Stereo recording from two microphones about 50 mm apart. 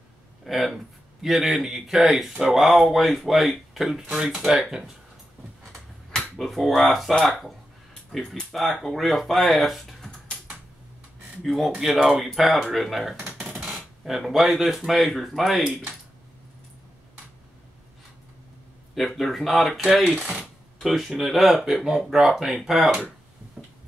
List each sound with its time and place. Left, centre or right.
0.5 s speech: centre
6.1 s speech: centre
11.4 s speech: centre
13.4 s a sound: centre
13.7 s speech: centre
18.9 s speech: centre
20.2 s dishes: right
20.8 s speech: centre
23.6 s tick-tock: right